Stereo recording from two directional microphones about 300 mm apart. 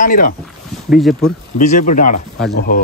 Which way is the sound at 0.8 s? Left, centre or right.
Centre.